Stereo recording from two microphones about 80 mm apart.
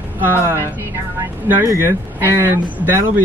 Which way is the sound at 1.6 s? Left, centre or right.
Right.